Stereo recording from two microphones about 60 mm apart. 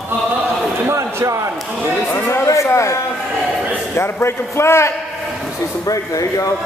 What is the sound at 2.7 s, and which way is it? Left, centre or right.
Speech, left.